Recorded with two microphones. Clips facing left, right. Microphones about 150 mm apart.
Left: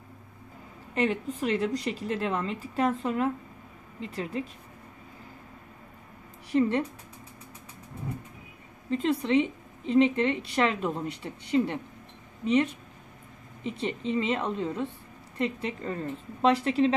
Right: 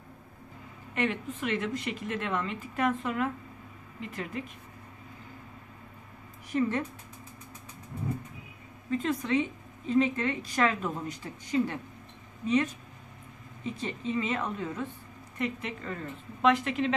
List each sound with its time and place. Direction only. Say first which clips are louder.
0.9 s a woman's voice: left 3 dB; 30° left (ahead or behind)
6.5 s a woman's voice: left 4 dB; 30° left (ahead or behind)
8.9 s a woman's voice: left 4 dB; 30° left (ahead or behind)